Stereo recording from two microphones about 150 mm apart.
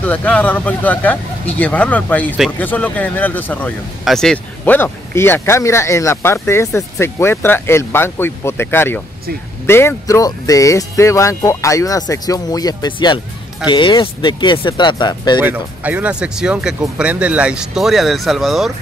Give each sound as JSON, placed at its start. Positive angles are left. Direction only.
{"t": 0.0, "sound": "speech", "side_deg": 10}
{"t": 15.4, "sound": "speech", "side_deg": -10}